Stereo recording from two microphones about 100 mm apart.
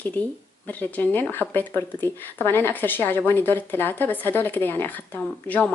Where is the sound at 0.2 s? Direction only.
15° left (ahead or behind).